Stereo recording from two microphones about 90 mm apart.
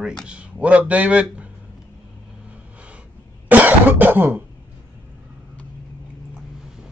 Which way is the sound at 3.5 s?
20° right (ahead or behind).